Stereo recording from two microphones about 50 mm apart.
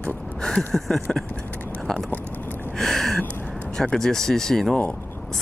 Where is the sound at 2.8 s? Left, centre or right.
Centre.